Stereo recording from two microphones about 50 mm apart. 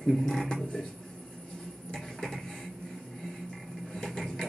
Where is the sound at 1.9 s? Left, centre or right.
Centre.